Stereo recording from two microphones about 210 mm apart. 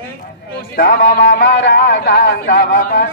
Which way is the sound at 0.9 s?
40° left (ahead or behind).